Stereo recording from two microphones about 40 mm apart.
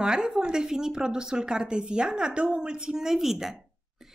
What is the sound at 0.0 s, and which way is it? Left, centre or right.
A woman's voice, centre.